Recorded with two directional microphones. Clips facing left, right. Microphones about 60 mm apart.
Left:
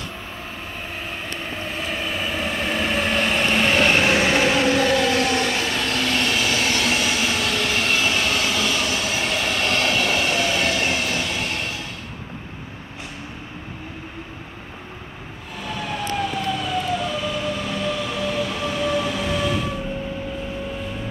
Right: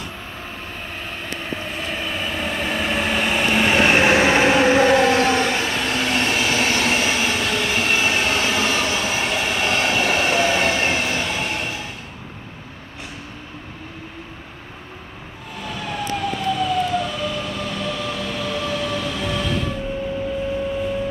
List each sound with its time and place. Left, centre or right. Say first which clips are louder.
1.4 s train: right 1 dB; centre; by 11.7 s right
15.7 s emergency vehicle: even; centre